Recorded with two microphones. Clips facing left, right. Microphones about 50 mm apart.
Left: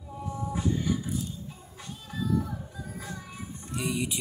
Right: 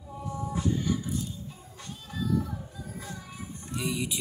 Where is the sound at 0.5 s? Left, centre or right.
Centre.